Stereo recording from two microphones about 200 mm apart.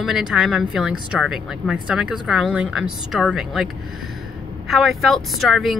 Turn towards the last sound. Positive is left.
turn(degrees=0)  # may be behind; listen again after turning